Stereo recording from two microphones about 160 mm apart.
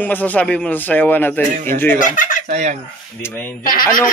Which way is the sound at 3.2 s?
15° left (ahead or behind).